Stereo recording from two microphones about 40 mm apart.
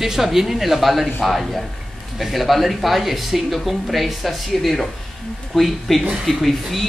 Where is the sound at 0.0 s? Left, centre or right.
Centre.